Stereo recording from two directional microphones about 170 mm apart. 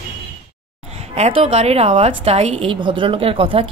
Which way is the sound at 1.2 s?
35° right (ahead or behind).